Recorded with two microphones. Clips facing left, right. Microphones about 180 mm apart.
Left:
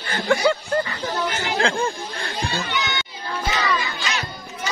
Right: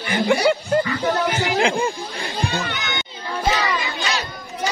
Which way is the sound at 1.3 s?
15° right (ahead or behind).